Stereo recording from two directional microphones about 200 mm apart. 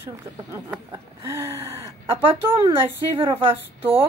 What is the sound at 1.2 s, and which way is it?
Gasp, 15° right (ahead or behind).